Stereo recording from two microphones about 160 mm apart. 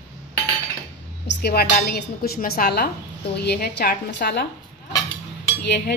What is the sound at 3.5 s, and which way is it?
A woman's voice, 85° left.